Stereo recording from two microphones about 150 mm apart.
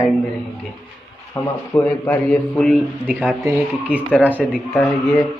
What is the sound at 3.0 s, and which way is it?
Speech, 10° right (ahead or behind).